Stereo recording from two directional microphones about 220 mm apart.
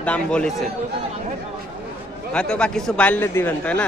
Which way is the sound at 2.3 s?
5° left (ahead or behind).